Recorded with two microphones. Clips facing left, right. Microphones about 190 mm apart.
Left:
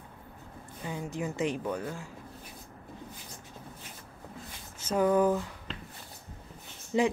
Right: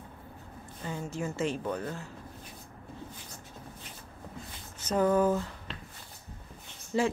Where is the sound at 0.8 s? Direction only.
15° left (ahead or behind).